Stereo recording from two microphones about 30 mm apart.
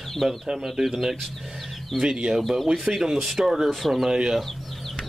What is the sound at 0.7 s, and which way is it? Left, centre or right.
Speech, centre.